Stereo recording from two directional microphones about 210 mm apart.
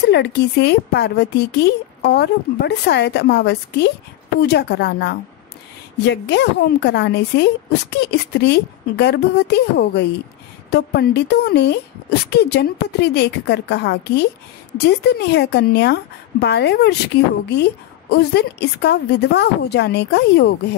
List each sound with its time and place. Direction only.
0.1 s a woman's voice: 55° left (ahead or behind)
15.3 s a woman's voice: 55° left (ahead or behind)